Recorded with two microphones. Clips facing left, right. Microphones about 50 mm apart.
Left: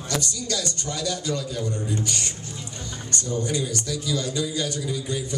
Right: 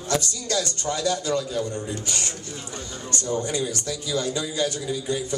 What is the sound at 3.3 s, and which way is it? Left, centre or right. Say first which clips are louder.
A man's voice: right 1 dB; right.